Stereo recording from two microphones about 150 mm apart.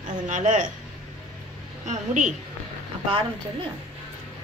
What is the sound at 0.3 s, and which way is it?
Speech, 55° right (ahead or behind).